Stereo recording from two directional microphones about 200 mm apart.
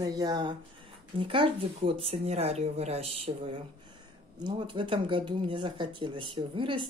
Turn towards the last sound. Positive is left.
turn(degrees=-25)  # may be behind; listen again after turning